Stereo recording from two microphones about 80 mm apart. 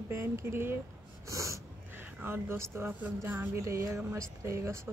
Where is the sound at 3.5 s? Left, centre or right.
Right.